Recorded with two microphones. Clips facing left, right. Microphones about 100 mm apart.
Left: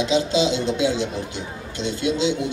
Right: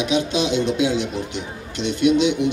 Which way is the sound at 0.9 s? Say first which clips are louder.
Right 2 dB; 20° right (ahead or behind).